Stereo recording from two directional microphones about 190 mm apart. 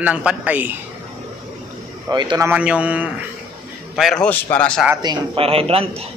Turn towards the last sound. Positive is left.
turn(degrees=-30)  # may be behind; listen again after turning